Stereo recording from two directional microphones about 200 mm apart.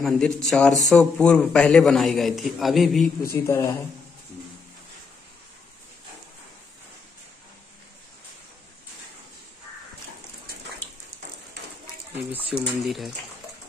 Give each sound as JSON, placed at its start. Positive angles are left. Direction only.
{"t": 0.0, "sound": "a man's voice", "side_deg": 0}
{"t": 3.4, "sound": "speech", "side_deg": 15}
{"t": 12.3, "sound": "a man's voice", "side_deg": -10}